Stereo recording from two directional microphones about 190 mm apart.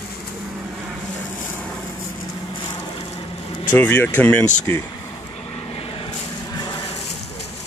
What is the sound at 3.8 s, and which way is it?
Speech, 10° left (ahead or behind).